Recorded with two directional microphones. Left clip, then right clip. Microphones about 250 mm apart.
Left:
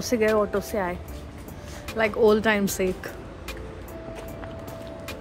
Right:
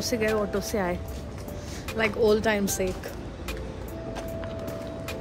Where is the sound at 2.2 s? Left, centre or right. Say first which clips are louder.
Left 3 dB; left.